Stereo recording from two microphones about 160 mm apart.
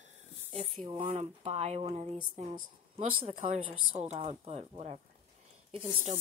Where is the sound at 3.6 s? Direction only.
40° right (ahead or behind).